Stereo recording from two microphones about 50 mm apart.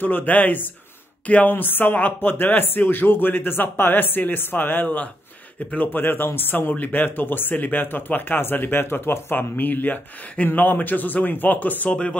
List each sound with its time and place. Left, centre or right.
0.0 s speech: left
1.5 s speech: left
11.9 s speech: left